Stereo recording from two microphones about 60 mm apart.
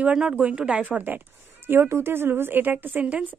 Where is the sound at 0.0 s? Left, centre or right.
Centre.